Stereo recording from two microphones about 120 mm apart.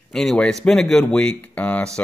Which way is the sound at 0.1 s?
5° left (ahead or behind).